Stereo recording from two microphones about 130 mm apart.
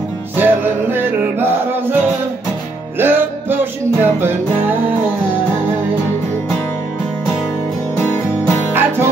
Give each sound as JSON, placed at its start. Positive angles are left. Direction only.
{"t": 0.4, "sound": "music", "side_deg": -15}
{"t": 3.0, "sound": "music", "side_deg": -15}
{"t": 8.0, "sound": "music", "side_deg": 25}
{"t": 8.7, "sound": "music", "side_deg": -15}